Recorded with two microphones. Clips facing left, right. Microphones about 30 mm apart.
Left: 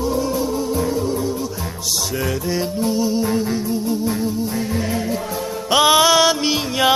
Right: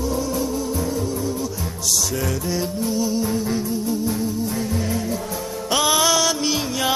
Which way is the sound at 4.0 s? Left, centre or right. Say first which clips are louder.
Left 2 dB; left.